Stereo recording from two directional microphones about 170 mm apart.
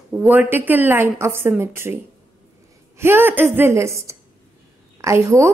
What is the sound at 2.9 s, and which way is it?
A woman's voice, 15° right (ahead or behind).